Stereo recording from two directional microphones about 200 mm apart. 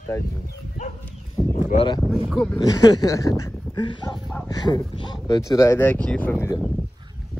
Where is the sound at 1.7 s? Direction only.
40° left (ahead or behind).